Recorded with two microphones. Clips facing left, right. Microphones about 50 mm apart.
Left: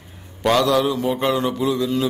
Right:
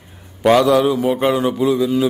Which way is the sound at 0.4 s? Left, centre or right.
Centre.